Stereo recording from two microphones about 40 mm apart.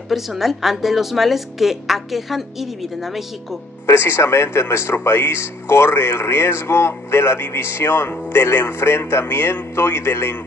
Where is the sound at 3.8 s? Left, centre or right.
Left.